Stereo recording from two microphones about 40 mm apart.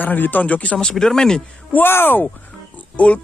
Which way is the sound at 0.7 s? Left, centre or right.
Centre.